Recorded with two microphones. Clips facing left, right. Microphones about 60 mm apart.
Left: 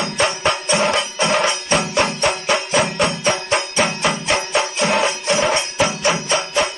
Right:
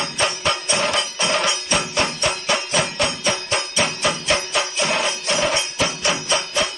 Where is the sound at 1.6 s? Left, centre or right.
Left; by 6.2 s centre.